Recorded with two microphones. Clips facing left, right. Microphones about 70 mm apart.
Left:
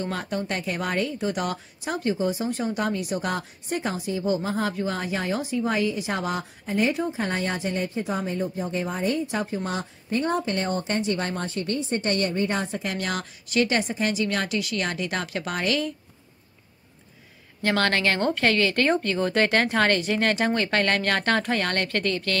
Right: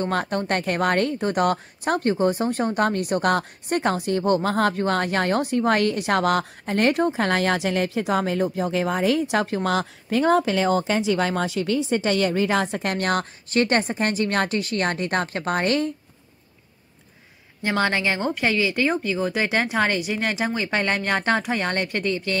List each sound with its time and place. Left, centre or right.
0.0 s a woman's voice: right
17.6 s speech: centre